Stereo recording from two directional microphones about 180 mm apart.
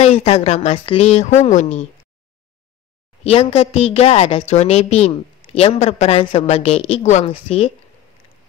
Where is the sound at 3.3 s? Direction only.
35° left (ahead or behind).